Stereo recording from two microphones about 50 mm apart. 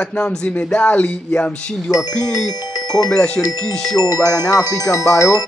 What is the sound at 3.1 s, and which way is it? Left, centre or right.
Speech, left.